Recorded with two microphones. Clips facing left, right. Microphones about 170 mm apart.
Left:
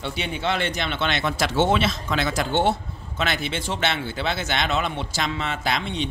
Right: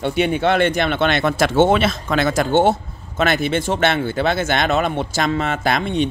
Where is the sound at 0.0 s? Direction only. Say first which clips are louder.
Right 9 dB; 55° right (ahead or behind).